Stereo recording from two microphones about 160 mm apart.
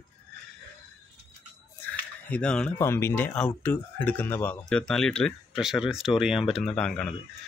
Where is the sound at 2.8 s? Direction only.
15° left (ahead or behind).